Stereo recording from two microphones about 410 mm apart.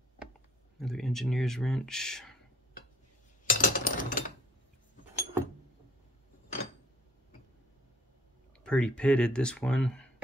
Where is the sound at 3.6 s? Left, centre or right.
Centre.